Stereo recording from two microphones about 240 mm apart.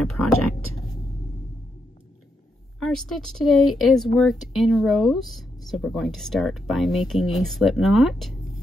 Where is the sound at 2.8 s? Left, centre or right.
Centre.